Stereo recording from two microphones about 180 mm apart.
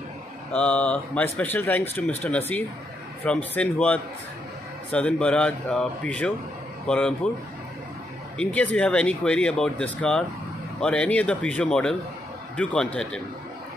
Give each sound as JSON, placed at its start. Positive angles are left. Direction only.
{"t": 0.5, "sound": "speech", "side_deg": 5}
{"t": 8.4, "sound": "speech", "side_deg": 5}